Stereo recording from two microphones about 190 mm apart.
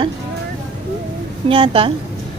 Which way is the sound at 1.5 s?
25° right (ahead or behind).